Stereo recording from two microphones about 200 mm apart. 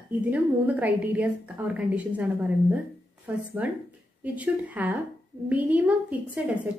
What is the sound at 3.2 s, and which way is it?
A woman's voice, 10° right (ahead or behind).